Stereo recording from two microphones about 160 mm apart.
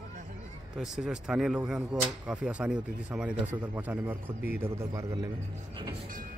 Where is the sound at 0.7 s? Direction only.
5° right (ahead or behind); by 5.3 s 20° right (ahead or behind).